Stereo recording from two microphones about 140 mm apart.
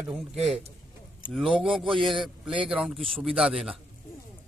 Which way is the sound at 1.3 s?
5° right (ahead or behind).